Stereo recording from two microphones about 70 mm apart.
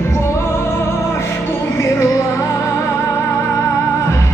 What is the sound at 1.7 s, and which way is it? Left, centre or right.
Music, left.